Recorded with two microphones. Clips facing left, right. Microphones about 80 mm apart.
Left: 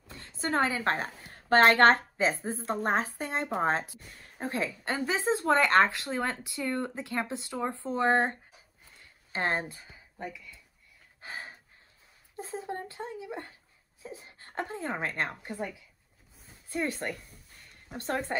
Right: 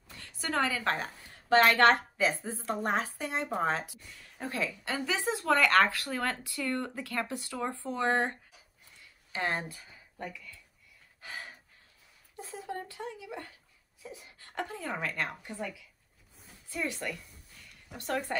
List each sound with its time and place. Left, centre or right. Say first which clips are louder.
0.1 s a woman's voice: left 3 dB; left
1.3 s a woman's voice: left 2 dB; left; by 10.6 s centre
11.1 s gasp: left 2 dB; left
12.4 s a sound: left 3 dB; left
14.0 s a woman's voice: left 3 dB; left
17.3 s a sound: left 1 dB; left
17.6 s speech: left 2 dB; left